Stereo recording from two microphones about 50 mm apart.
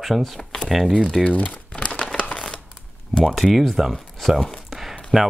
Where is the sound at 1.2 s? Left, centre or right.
Left.